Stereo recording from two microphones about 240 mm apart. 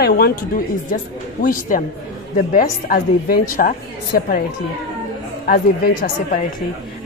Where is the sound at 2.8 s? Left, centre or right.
Left.